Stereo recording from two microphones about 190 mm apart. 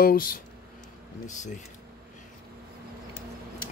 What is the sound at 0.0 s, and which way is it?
Speech, 50° left (ahead or behind).